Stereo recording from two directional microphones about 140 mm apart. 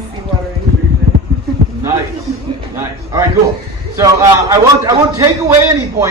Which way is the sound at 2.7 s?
20° right (ahead or behind).